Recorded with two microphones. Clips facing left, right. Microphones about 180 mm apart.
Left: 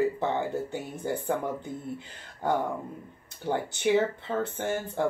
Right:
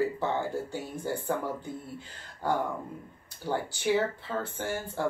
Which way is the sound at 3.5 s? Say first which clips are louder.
Left 3 dB; 20° left (ahead or behind).